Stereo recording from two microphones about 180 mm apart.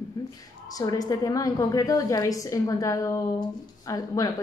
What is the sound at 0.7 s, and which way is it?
A woman's voice, 20° left (ahead or behind).